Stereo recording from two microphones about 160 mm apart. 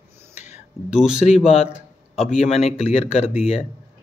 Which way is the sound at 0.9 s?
5° right (ahead or behind).